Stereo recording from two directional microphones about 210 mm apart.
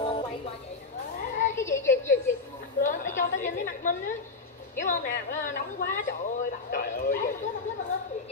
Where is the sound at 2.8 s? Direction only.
35° left (ahead or behind).